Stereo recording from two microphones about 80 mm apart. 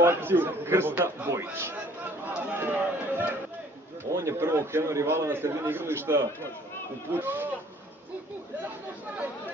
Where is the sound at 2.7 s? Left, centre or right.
Right.